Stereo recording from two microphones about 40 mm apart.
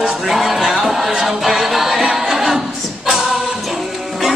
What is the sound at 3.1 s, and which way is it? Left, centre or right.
Music, centre.